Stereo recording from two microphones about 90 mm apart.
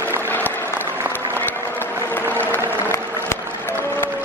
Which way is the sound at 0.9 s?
25° right (ahead or behind).